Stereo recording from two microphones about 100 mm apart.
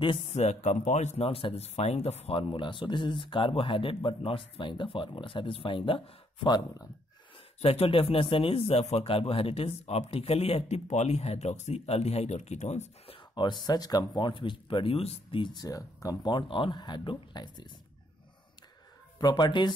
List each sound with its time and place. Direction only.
0.3 s speech: 90° left
1.1 s speech: 75° left (ahead or behind); by 6.5 s 60° left (ahead or behind)
7.6 s speech: 75° left (ahead or behind); by 12.3 s 90° left
12.7 s speech: 75° left (ahead or behind)
13.3 s speech: 50° left (ahead or behind); by 15.4 s 75° left (ahead or behind)
15.4 s speech: 50° left (ahead or behind)
15.7 s speech: 35° left (ahead or behind)
16.3 s speech: 55° left (ahead or behind)
19.1 s speech: 45° left (ahead or behind)